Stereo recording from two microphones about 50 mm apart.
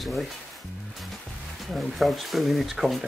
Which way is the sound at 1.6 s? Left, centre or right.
Centre.